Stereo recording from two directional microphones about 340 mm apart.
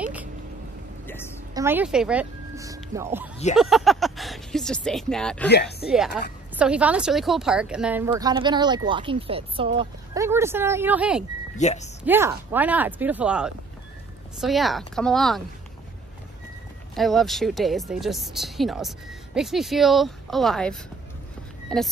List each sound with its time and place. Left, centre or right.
0.0 s a sound: centre
1.0 s a sound: centre
1.5 s speech: centre
5.5 s speech: left
5.9 s a woman's voice: centre
11.5 s speech: centre
12.0 s speech: centre
16.9 s speech: centre